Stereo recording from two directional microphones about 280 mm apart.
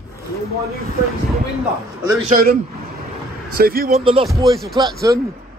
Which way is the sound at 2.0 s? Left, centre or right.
Centre.